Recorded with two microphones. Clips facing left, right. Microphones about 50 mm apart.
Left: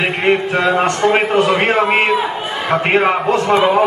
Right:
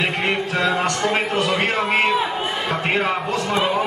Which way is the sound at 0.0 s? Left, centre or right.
Left.